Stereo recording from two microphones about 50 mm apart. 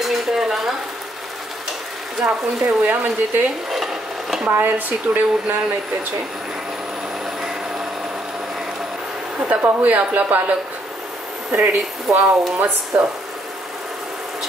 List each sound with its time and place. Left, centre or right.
0.0 s stir: centre
2.6 s speech: right
3.7 s stir: centre
4.5 s speech: right
9.4 s speech: right
11.5 s speech: right